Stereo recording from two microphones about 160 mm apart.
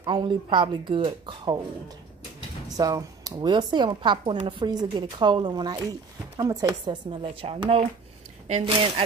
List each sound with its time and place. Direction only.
0.0 s speech: 30° right (ahead or behind)
2.8 s speech: 25° right (ahead or behind)
6.9 s speech: 30° right (ahead or behind)